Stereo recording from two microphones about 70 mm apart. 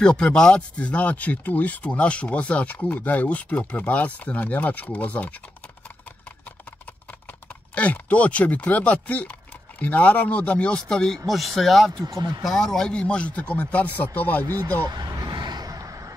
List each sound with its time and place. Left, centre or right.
0.0 s speech: centre
7.7 s speech: centre
12.1 s speech: right
12.4 s speech: centre; by 14.5 s left
14.9 s vehicle: right